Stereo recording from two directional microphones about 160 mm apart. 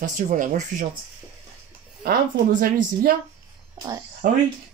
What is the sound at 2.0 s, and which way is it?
A woman's voice, 65° right (ahead or behind).